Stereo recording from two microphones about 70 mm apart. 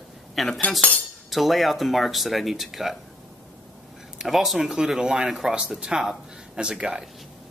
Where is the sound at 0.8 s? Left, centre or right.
Centre.